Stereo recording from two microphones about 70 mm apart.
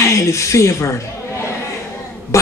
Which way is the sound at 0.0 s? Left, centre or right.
Left.